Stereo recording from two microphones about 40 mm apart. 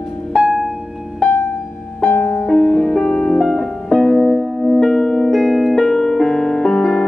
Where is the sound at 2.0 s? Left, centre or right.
Left.